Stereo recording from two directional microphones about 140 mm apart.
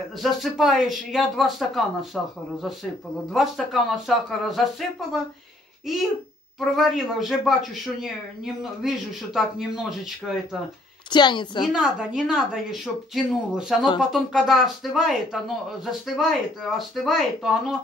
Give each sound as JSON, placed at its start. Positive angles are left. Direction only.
{"t": 0.2, "sound": "speech", "side_deg": 0}
{"t": 3.3, "sound": "speech", "side_deg": 0}
{"t": 6.6, "sound": "speech", "side_deg": 0}
{"t": 11.1, "sound": "a woman's voice", "side_deg": 30}
{"t": 11.7, "sound": "speech", "side_deg": -5}